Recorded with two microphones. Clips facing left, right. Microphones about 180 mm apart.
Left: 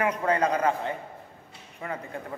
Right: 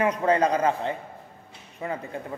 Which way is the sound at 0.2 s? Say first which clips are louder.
Right 3 dB; 30° right (ahead or behind).